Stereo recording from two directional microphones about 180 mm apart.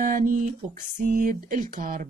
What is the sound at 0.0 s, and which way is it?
A man's voice, 50° right (ahead or behind).